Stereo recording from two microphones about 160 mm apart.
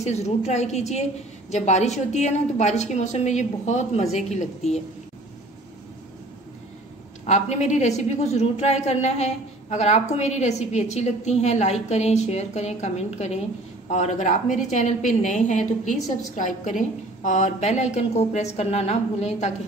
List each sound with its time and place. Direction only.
0.0 s a woman's voice: 45° left (ahead or behind)
7.2 s a woman's voice: 45° left (ahead or behind)